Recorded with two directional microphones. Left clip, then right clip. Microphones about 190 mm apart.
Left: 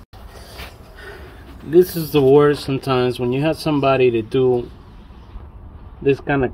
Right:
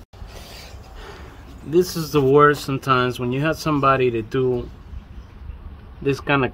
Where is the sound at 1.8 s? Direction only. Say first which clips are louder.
Left 4 dB; centre (ahead or behind).